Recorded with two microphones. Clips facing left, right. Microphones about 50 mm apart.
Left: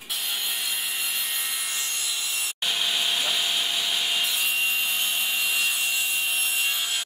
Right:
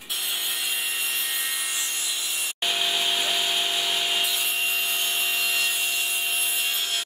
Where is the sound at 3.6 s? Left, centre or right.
Centre.